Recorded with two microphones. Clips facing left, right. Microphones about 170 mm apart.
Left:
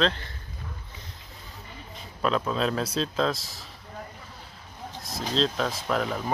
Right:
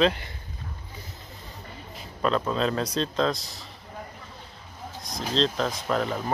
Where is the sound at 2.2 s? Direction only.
Centre (ahead or behind).